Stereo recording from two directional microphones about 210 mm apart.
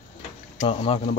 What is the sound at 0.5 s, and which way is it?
Speech, 30° left (ahead or behind).